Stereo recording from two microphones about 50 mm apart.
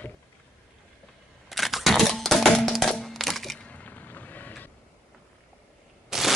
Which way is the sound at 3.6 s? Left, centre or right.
Left.